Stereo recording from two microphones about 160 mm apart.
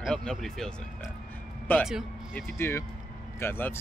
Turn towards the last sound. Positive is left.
turn(degrees=15)  # may be behind; listen again after turning